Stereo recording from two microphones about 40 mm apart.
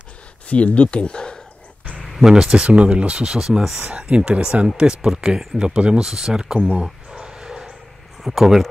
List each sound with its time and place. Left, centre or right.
0.5 s speech: left
2.2 s speech: centre
3.3 s speech: centre
4.2 s speech: right
6.0 s a sound: centre
8.2 s speech: centre